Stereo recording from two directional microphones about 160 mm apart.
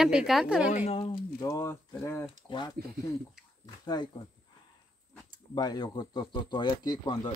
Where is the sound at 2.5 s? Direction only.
30° left (ahead or behind).